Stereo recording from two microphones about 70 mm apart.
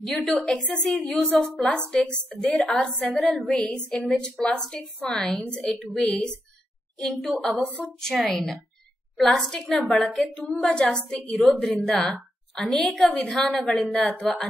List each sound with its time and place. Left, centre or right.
0.4 s a woman's voice: centre
2.7 s a woman's voice: centre
10.3 s a woman's voice: centre
11.4 s a woman's voice: centre